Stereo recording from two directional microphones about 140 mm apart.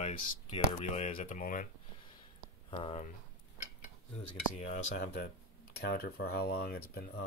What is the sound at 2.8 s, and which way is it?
Speech, 55° left (ahead or behind).